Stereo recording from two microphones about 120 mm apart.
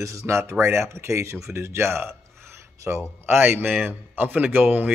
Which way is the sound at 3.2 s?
20° right (ahead or behind).